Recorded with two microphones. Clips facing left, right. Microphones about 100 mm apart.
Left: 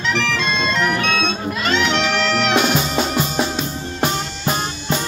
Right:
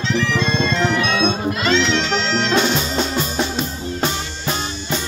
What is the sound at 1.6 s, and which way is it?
Music, 60° left (ahead or behind).